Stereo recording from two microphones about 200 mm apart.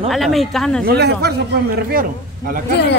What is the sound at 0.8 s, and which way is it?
Speech, 55° right (ahead or behind).